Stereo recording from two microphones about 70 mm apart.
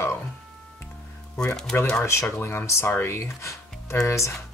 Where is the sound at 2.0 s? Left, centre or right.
Left.